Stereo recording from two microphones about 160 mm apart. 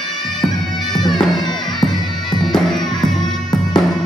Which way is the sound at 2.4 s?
Centre (ahead or behind).